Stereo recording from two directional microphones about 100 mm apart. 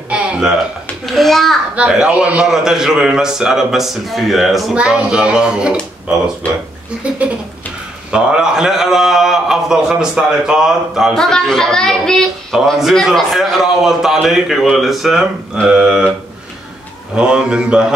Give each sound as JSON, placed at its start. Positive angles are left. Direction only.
{"t": 0.1, "sound": "a sound", "side_deg": -10}
{"t": 1.0, "sound": "a man's voice", "side_deg": 0}
{"t": 6.4, "sound": "speech", "side_deg": 15}
{"t": 8.1, "sound": "a man's voice", "side_deg": -10}
{"t": 17.1, "sound": "speech", "side_deg": -10}